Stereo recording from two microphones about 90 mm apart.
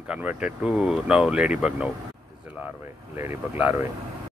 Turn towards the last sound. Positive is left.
turn(degrees=-25)  # may be behind; listen again after turning